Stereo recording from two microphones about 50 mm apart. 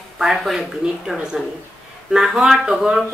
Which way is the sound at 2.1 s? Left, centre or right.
Centre.